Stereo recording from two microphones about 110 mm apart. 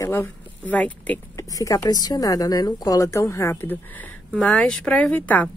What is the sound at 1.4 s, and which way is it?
A woman's voice, 30° left (ahead or behind).